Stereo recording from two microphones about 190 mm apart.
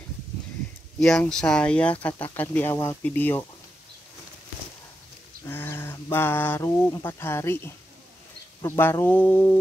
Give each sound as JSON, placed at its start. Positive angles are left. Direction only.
{"t": 0.9, "sound": "speech", "side_deg": 5}
{"t": 5.4, "sound": "a sound", "side_deg": 10}
{"t": 8.6, "sound": "speech", "side_deg": 15}